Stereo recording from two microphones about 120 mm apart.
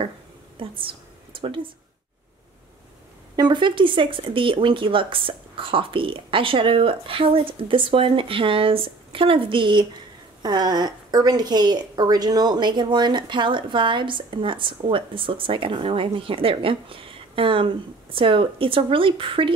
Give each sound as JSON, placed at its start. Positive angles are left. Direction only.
{"t": 0.6, "sound": "a woman's voice", "side_deg": -45}
{"t": 3.3, "sound": "a woman's voice", "side_deg": -40}